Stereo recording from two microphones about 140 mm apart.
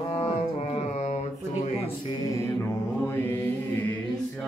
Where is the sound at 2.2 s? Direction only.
25° left (ahead or behind).